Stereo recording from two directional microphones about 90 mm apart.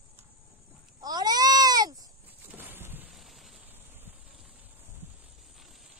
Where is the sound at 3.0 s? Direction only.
Centre (ahead or behind).